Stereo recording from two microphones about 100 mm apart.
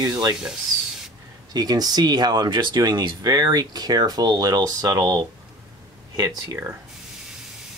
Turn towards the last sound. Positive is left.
turn(degrees=-40)  # may be behind; listen again after turning